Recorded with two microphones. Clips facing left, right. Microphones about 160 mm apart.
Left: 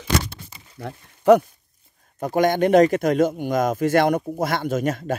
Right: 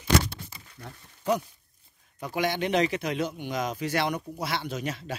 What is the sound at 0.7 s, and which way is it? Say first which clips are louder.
Speech: left 13 dB; 70° left (ahead or behind).